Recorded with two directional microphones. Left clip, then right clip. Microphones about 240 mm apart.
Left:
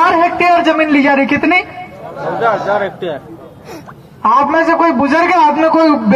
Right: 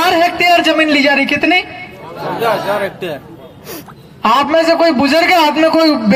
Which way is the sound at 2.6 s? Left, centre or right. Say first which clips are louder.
Left 2 dB; right.